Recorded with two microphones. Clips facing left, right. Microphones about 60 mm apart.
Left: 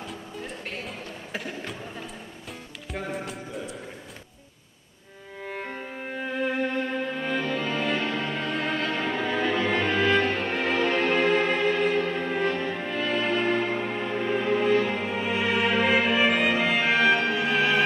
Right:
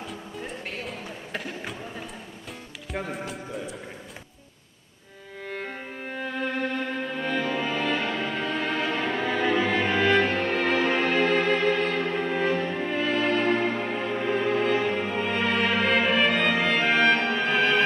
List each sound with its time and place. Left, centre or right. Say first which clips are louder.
0.0 s music: right 1 dB; centre
2.9 s music: even; centre
5.4 s music: even; centre